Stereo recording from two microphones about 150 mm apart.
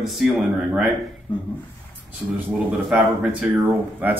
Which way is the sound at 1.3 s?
30° left (ahead or behind).